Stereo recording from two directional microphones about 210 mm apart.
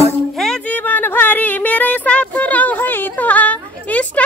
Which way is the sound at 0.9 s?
10° left (ahead or behind).